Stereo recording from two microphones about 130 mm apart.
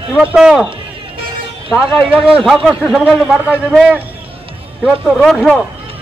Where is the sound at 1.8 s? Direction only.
5° right (ahead or behind).